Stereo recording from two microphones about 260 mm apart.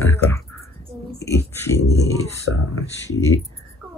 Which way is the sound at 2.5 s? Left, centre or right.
Left.